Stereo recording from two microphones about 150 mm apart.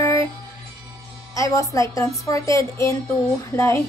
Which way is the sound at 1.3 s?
20° left (ahead or behind).